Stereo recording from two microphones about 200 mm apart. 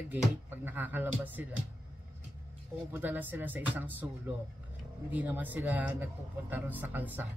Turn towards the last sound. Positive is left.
turn(degrees=-10)  # may be behind; listen again after turning